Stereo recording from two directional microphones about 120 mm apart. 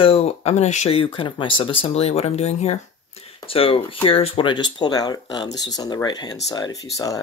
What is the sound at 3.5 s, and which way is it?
Speech, 50° left (ahead or behind).